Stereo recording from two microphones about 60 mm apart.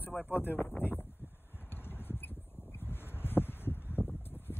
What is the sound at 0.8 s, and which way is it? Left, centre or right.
Speech, left.